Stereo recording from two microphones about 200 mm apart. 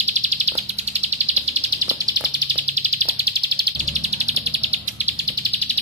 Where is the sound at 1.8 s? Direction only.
15° right (ahead or behind).